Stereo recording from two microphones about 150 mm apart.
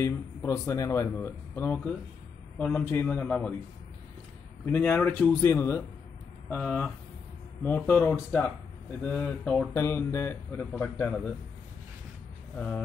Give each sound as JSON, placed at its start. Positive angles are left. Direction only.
{"t": 0.0, "sound": "speech", "side_deg": 15}
{"t": 4.6, "sound": "speech", "side_deg": 10}
{"t": 5.5, "sound": "speech", "side_deg": 20}
{"t": 6.5, "sound": "speech", "side_deg": 10}
{"t": 12.5, "sound": "speech", "side_deg": 10}